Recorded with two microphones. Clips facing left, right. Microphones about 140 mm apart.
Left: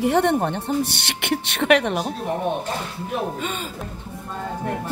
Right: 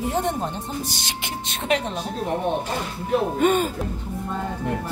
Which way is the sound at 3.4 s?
50° right (ahead or behind).